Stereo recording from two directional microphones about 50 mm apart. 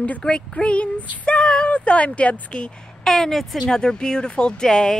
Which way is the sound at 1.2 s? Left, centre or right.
Left.